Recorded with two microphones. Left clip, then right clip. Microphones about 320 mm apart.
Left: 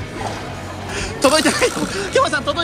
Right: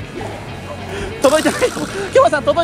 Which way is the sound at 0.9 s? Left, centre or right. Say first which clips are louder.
Right 2 dB; centre.